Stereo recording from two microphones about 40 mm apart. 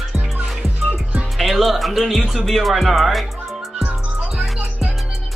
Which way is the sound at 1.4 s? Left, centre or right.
Centre.